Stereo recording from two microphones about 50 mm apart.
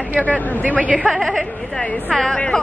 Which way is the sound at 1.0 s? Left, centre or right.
Centre.